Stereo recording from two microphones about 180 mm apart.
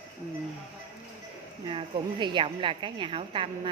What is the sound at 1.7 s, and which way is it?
A woman's voice, 25° right (ahead or behind).